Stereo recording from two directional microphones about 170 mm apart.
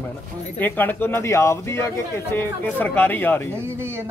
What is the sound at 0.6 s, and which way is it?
Speech, 10° left (ahead or behind).